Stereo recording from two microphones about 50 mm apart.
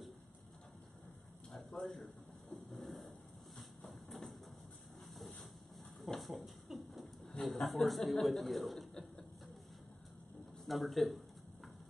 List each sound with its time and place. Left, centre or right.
1.5 s a sound: centre
7.4 s a man's voice: centre
10.6 s speech: centre